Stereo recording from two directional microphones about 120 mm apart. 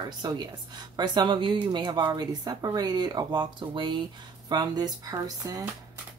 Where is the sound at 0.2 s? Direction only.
35° right (ahead or behind).